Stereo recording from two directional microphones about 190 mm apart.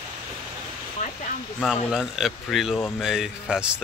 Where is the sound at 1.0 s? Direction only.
40° left (ahead or behind).